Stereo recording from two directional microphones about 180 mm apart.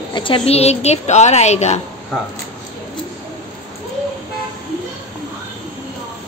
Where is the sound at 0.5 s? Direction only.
35° left (ahead or behind).